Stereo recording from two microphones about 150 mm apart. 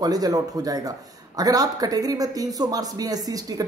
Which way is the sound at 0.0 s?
25° right (ahead or behind).